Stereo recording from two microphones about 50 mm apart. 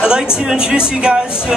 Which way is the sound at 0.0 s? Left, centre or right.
Centre.